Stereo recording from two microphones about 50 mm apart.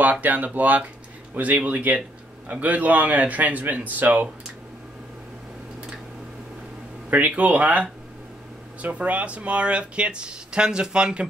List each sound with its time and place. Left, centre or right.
0.0 s a man's voice: right
7.1 s a man's voice: right; by 11.2 s centre